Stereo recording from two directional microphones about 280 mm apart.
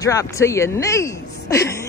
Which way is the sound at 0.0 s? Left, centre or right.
Centre.